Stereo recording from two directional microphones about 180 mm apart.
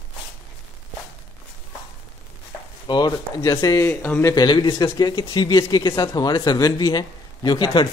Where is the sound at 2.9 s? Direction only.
20° left (ahead or behind).